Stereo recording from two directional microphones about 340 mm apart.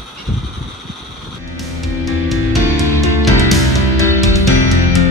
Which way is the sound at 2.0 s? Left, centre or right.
Centre.